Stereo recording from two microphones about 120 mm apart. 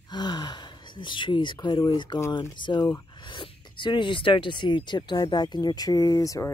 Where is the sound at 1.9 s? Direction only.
40° left (ahead or behind).